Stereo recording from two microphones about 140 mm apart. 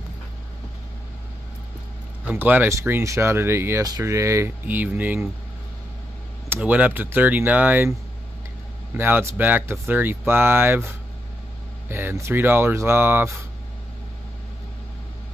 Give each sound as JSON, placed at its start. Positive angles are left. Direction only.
{"t": 2.2, "sound": "speech", "side_deg": -10}
{"t": 6.5, "sound": "speech", "side_deg": -10}
{"t": 8.9, "sound": "speech", "side_deg": -15}
{"t": 11.9, "sound": "speech", "side_deg": -15}